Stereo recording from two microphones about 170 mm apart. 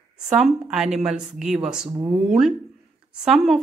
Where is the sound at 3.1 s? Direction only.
5° right (ahead or behind).